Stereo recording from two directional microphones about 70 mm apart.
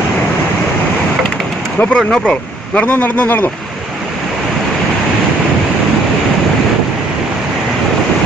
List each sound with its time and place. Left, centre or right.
1.8 s speech: centre